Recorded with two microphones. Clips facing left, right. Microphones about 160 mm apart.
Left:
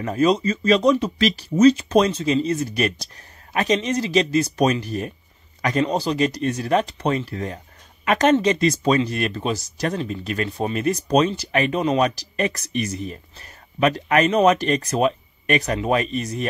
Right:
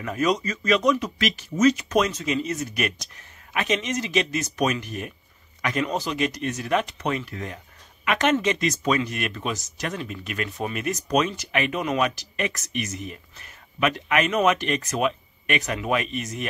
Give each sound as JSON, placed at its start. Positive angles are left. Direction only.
{"t": 0.0, "sound": "speech", "side_deg": 30}